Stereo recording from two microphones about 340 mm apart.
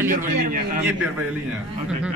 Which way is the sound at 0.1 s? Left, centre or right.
Right.